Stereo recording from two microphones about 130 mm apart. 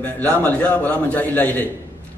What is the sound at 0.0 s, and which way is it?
A man's voice, 10° left (ahead or behind).